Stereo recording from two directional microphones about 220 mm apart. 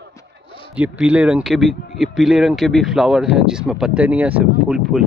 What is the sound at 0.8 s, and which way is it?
Speech, 5° right (ahead or behind).